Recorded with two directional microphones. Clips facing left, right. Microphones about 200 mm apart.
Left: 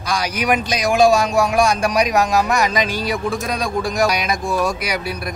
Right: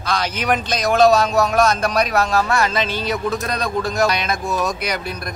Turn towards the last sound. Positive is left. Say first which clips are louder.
# left 2 dB
turn(degrees=10)  # may be behind; listen again after turning